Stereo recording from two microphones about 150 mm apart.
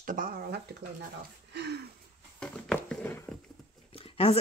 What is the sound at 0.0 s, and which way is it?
Speech, 65° right (ahead or behind).